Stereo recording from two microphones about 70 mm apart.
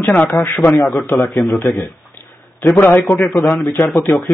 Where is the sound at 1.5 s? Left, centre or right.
Left.